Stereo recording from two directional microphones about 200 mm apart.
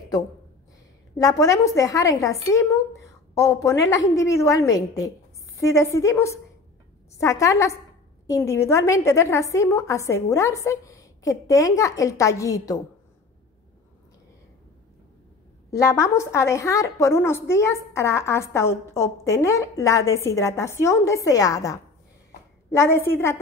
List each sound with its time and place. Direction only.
1.1 s a woman's voice: 15° left (ahead or behind)
15.7 s a woman's voice: 15° left (ahead or behind)